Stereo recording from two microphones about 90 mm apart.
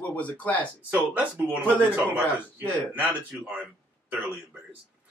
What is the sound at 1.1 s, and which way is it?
Speech, 15° right (ahead or behind).